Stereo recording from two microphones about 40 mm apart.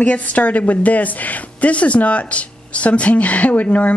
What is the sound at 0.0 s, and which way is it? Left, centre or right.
A woman's voice, left.